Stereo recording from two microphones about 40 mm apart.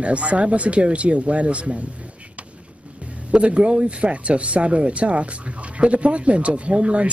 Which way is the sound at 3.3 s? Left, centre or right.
Right.